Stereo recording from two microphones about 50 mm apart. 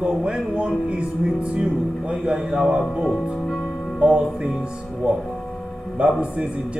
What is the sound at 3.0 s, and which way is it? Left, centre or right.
Speech, centre.